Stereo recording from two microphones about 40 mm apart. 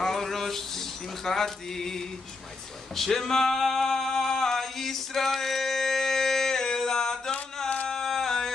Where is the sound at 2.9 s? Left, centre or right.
Centre.